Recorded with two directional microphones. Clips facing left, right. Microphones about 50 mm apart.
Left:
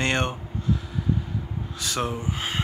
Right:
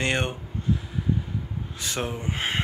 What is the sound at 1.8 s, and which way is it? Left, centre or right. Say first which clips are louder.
Speech: left 2 dB; right.